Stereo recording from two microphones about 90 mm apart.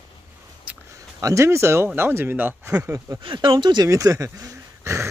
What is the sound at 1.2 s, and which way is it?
Speech, 35° right (ahead or behind).